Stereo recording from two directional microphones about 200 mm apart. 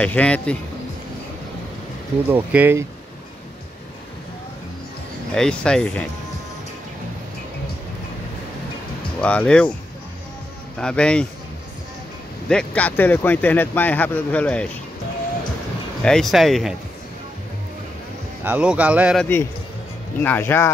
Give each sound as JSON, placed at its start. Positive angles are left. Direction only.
{"t": 0.0, "sound": "speech", "side_deg": 5}
{"t": 2.3, "sound": "speech", "side_deg": -10}
{"t": 5.3, "sound": "speech", "side_deg": 5}
{"t": 9.2, "sound": "speech", "side_deg": 5}
{"t": 10.8, "sound": "speech", "side_deg": 5}
{"t": 12.4, "sound": "speech", "side_deg": 5}
{"t": 16.0, "sound": "speech", "side_deg": 5}
{"t": 18.4, "sound": "speech", "side_deg": -5}
{"t": 20.2, "sound": "speech", "side_deg": 10}